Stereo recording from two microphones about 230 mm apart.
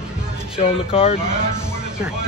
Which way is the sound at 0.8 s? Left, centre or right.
Left.